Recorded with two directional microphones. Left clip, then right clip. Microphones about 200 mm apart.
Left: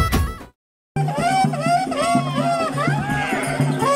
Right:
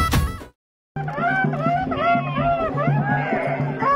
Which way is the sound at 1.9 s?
5° right (ahead or behind).